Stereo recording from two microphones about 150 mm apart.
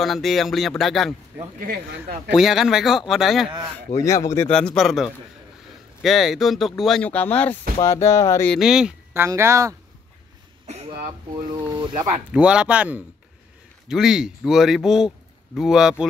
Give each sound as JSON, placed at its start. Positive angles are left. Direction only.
{"t": 0.0, "sound": "speech", "side_deg": 0}
{"t": 1.6, "sound": "speech", "side_deg": -90}
{"t": 2.3, "sound": "speech", "side_deg": 0}
{"t": 3.9, "sound": "speech", "side_deg": 20}
{"t": 4.4, "sound": "speech", "side_deg": 5}
{"t": 8.5, "sound": "speech", "side_deg": 0}
{"t": 9.1, "sound": "speech", "side_deg": -15}
{"t": 10.7, "sound": "throat clearing", "side_deg": -45}
{"t": 11.3, "sound": "speech", "side_deg": -30}
{"t": 12.3, "sound": "speech", "side_deg": -5}